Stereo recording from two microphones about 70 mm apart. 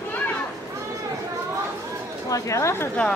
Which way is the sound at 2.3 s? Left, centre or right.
Left.